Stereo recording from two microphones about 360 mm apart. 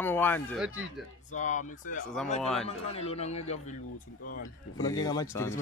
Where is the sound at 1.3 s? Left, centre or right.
Left.